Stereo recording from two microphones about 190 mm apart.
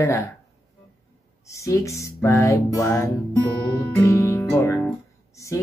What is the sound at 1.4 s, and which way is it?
Speech, 15° left (ahead or behind).